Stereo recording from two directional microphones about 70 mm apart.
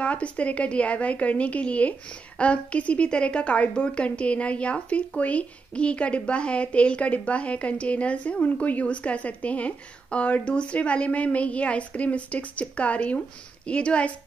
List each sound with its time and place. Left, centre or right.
0.0 s a woman's voice: centre